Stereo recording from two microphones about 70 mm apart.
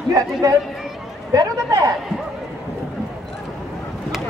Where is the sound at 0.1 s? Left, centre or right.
Right.